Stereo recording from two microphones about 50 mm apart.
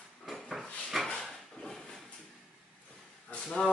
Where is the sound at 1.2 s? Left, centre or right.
Centre.